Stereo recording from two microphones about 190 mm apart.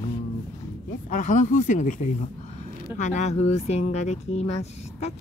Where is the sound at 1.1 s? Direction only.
40° left (ahead or behind).